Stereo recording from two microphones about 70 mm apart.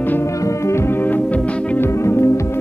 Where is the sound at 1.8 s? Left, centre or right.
Left.